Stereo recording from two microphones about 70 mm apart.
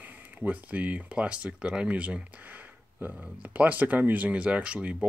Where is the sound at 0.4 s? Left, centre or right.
Right.